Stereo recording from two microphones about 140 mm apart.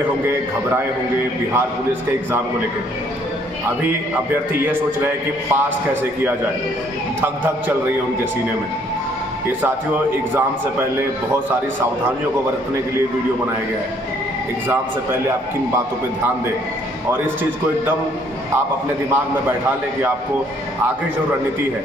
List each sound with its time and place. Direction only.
4.5 s a man's voice: 15° right (ahead or behind)
7.2 s a man's voice: 15° right (ahead or behind)